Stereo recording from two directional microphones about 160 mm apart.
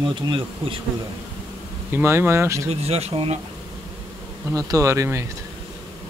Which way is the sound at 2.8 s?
40° right (ahead or behind).